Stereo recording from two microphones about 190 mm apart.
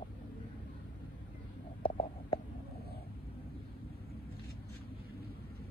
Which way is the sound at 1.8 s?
25° left (ahead or behind).